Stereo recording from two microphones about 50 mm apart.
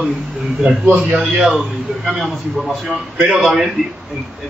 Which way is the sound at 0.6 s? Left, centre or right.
Right.